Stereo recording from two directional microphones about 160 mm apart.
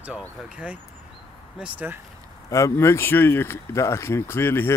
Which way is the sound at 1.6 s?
10° right (ahead or behind).